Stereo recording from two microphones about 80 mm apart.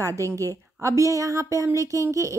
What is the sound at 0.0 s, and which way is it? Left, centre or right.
A woman's voice, right.